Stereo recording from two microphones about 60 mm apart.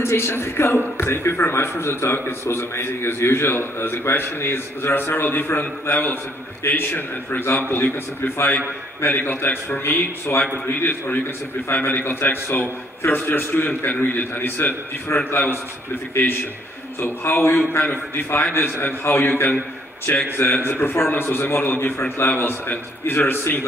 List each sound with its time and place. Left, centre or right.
0.0 s a man's voice: left
16.1 s a man's voice: left
17.3 s a man's voice: left
20.1 s a man's voice: left
20.6 s a man's voice: left